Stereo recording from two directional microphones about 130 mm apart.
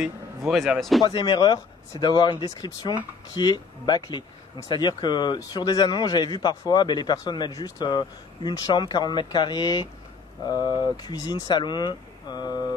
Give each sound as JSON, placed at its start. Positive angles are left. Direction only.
{"t": 0.5, "sound": "speech", "side_deg": 0}
{"t": 1.0, "sound": "speech", "side_deg": 35}